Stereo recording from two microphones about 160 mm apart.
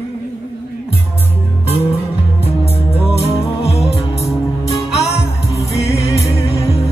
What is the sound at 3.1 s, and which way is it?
Music, 40° left (ahead or behind).